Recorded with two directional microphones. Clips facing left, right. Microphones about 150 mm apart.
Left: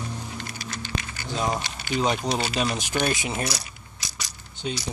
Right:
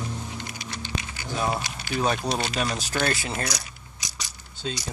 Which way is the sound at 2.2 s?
20° left (ahead or behind).